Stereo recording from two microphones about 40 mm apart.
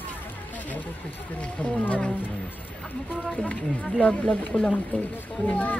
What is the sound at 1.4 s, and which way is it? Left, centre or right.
Speech, left.